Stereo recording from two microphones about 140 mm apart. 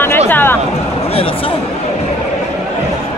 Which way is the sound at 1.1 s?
40° left (ahead or behind).